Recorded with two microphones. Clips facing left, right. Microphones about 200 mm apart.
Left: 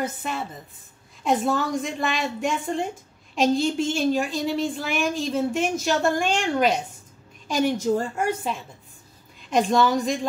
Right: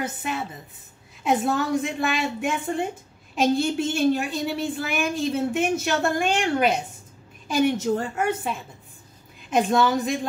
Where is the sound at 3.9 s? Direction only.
60° right (ahead or behind).